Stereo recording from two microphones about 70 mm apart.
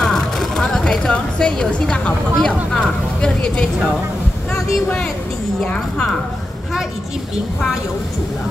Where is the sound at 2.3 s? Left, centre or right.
Centre.